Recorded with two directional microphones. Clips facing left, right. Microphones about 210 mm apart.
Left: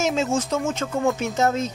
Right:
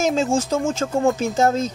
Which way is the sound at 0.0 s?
35° right (ahead or behind).